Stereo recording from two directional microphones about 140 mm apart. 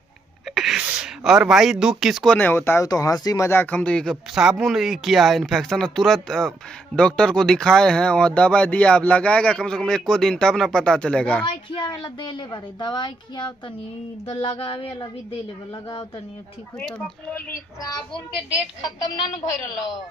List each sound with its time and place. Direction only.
0.6 s speech: 5° right (ahead or behind)
2.3 s speech: 15° left (ahead or behind)
3.7 s speech: 10° left (ahead or behind)
11.4 s a woman's voice: 30° left (ahead or behind)
16.8 s speech: 5° left (ahead or behind)